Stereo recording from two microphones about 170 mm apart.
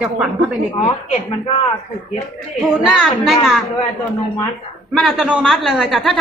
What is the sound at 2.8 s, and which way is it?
Speech, centre (ahead or behind).